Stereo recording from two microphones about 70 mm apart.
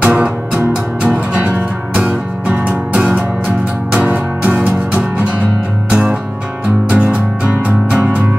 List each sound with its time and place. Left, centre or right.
0.0 s music: centre